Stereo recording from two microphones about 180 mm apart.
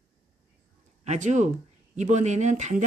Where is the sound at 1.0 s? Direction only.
40° right (ahead or behind).